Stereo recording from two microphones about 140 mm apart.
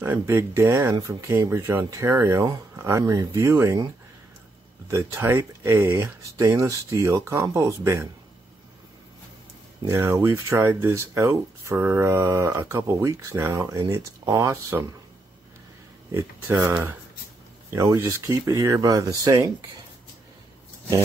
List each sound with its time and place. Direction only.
0.0 s speech: 20° right (ahead or behind)
4.8 s speech: 20° right (ahead or behind)
9.8 s speech: 20° right (ahead or behind)
16.1 s speech: 20° right (ahead or behind)
17.7 s speech: 20° right (ahead or behind)